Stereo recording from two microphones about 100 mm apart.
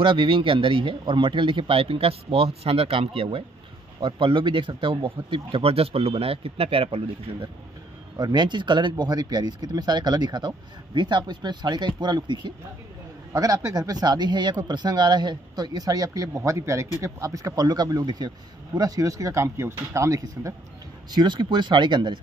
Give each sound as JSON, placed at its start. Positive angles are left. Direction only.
{"t": 0.0, "sound": "speech", "side_deg": -55}
{"t": 8.2, "sound": "speech", "side_deg": -45}
{"t": 13.3, "sound": "speech", "side_deg": -35}
{"t": 21.1, "sound": "speech", "side_deg": -50}